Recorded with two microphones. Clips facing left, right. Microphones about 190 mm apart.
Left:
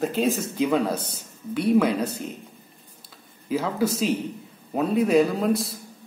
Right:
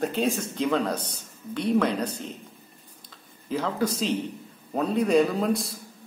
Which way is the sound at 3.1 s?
5° left (ahead or behind).